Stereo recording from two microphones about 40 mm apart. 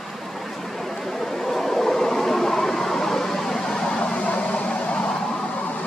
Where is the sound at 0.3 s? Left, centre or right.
Centre; by 5.9 s left.